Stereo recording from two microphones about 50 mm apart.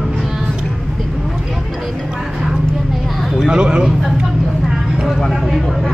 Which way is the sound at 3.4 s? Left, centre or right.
Centre.